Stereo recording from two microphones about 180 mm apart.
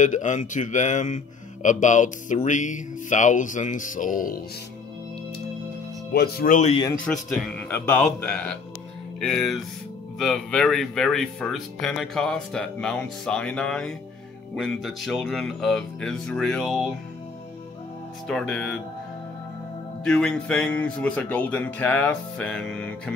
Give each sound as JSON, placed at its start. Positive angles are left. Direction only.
{"t": 0.0, "sound": "speech", "side_deg": 45}
{"t": 6.1, "sound": "speech", "side_deg": 60}
{"t": 7.1, "sound": "speech", "side_deg": 0}
{"t": 18.3, "sound": "speech", "side_deg": 5}
{"t": 20.1, "sound": "speech", "side_deg": 5}